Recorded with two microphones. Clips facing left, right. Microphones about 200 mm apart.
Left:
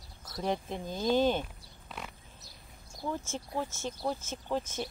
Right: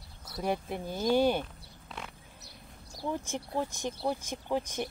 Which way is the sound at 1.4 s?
Centre (ahead or behind).